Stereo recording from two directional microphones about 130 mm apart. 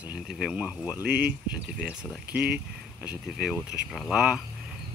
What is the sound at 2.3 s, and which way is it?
Speech, 10° right (ahead or behind).